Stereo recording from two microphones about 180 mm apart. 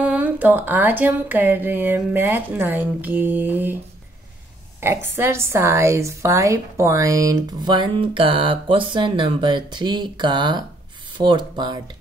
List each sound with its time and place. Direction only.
0.0 s speech: 10° right (ahead or behind)
4.7 s a woman's voice: 15° right (ahead or behind)